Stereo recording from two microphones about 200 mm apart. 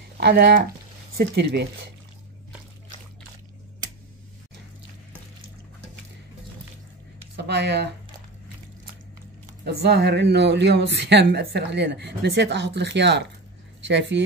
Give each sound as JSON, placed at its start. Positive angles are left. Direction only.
{"t": 0.2, "sound": "speech", "side_deg": -55}
{"t": 7.3, "sound": "speech", "side_deg": -55}
{"t": 9.7, "sound": "speech", "side_deg": -55}